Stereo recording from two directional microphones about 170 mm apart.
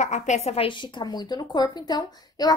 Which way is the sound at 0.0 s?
45° left (ahead or behind).